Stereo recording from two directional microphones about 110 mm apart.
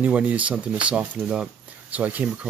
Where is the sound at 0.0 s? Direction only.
15° right (ahead or behind).